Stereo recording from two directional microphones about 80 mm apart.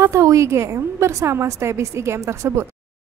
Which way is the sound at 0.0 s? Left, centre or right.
Right.